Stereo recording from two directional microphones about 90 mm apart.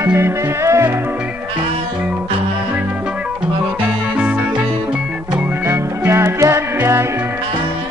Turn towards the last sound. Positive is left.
turn(degrees=-35)  # may be behind; listen again after turning